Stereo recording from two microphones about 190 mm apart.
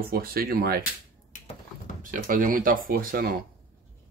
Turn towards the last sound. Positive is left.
turn(degrees=-50)  # may be behind; listen again after turning